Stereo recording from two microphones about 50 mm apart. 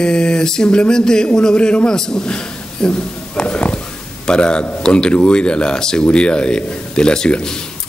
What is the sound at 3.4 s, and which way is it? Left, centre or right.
Speech, left.